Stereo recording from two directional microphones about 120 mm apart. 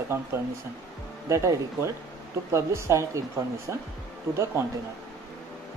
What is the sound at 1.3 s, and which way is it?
Speech, 25° right (ahead or behind).